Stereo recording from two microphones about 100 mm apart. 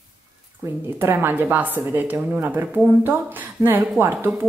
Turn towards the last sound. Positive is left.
turn(degrees=-20)  # may be behind; listen again after turning